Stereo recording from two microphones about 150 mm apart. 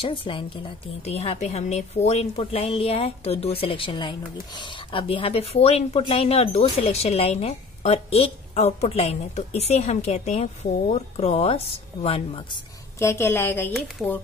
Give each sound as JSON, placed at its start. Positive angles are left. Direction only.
{"t": 0.0, "sound": "a woman's voice", "side_deg": 35}
{"t": 1.0, "sound": "speech", "side_deg": 45}
{"t": 13.0, "sound": "a woman's voice", "side_deg": 20}
{"t": 14.0, "sound": "speech", "side_deg": -15}